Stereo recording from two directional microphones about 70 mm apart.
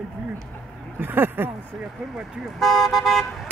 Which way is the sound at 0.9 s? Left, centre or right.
Right.